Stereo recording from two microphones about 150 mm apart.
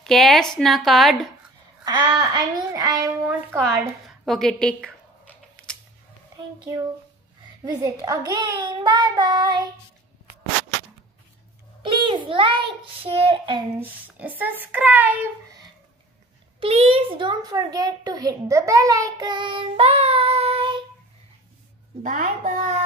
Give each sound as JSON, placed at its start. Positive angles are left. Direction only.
{"t": 0.0, "sound": "speech", "side_deg": 0}
{"t": 1.9, "sound": "speech", "side_deg": -30}
{"t": 4.1, "sound": "a sound", "side_deg": 5}
{"t": 6.3, "sound": "a child's voice", "side_deg": -25}
{"t": 11.8, "sound": "a child's voice", "side_deg": -35}
{"t": 13.7, "sound": "speech", "side_deg": -10}
{"t": 16.5, "sound": "a child's voice", "side_deg": -40}
{"t": 22.0, "sound": "a child's voice", "side_deg": -65}